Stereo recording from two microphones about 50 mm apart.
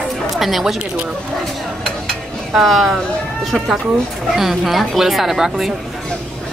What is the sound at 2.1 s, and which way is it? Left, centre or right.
Stir, centre.